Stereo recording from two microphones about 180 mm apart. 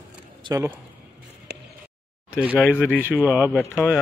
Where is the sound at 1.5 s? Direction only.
65° right (ahead or behind).